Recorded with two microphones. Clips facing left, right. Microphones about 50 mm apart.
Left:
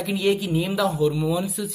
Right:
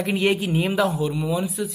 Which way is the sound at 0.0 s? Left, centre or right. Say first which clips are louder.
Right 1 dB; right.